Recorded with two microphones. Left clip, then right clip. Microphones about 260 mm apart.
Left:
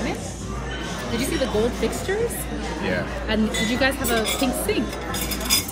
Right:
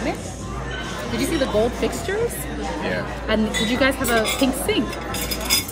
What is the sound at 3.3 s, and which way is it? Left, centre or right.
Speech, right.